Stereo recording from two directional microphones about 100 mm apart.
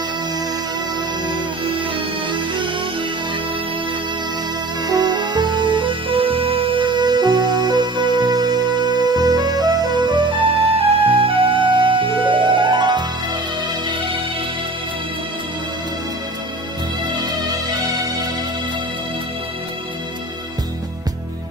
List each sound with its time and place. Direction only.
2.3 s music: 55° right (ahead or behind)
4.8 s music: 40° right (ahead or behind)
10.6 s music: 65° right (ahead or behind); by 13.0 s 45° right (ahead or behind)